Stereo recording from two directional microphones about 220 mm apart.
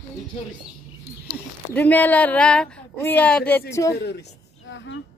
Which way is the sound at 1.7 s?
10° left (ahead or behind).